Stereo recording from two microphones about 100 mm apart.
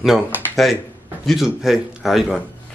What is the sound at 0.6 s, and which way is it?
Speech, centre (ahead or behind).